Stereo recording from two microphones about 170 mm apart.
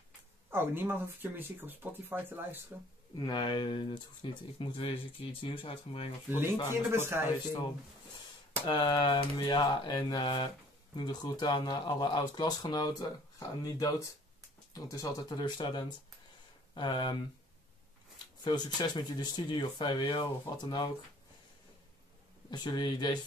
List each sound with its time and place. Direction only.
0.5 s speech: 15° right (ahead or behind)
3.2 s speech: 25° left (ahead or behind)
6.9 s speech: 15° right (ahead or behind)
8.6 s speech: 25° left (ahead or behind)
18.4 s speech: 25° left (ahead or behind)
22.5 s speech: 25° left (ahead or behind)